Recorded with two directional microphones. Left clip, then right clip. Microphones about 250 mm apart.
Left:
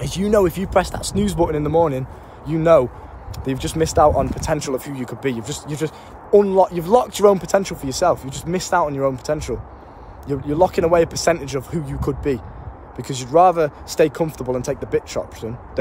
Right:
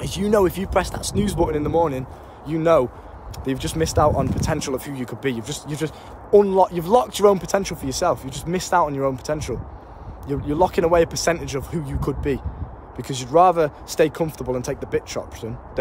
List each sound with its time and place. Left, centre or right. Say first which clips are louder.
0.0 s speech: left 2 dB; centre